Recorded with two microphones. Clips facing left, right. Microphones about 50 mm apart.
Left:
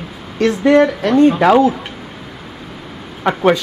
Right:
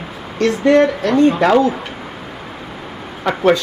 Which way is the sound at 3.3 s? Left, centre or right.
Left.